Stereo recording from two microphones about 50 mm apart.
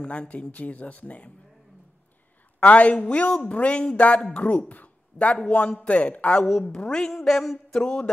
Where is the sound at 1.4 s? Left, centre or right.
Centre.